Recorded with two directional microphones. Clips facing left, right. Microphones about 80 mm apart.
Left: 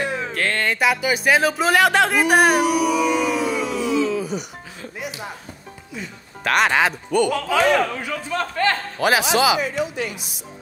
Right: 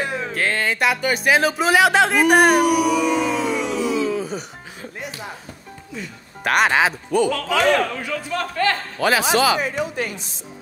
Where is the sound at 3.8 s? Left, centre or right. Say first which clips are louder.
Left 2 dB; centre.